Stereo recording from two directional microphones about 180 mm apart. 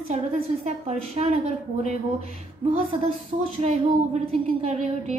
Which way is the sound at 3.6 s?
35° right (ahead or behind).